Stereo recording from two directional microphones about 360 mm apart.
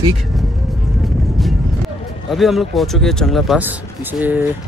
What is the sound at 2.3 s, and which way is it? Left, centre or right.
Speech, centre.